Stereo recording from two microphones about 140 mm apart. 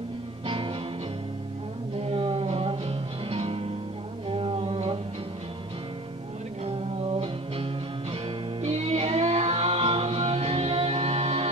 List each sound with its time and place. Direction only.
0.5 s music: 35° right (ahead or behind)
2.0 s music: 45° right (ahead or behind)
4.3 s a sound: 40° right (ahead or behind)
8.6 s music: 50° right (ahead or behind)